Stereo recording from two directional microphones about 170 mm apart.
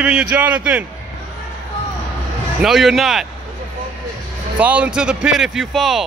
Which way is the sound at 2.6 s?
Centre (ahead or behind).